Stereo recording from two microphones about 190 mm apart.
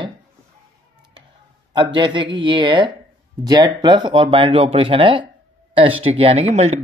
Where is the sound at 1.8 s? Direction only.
25° right (ahead or behind).